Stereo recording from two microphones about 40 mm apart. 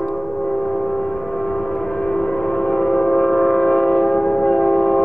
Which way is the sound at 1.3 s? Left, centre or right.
Left.